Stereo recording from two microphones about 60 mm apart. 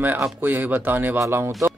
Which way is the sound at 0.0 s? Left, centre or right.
Right.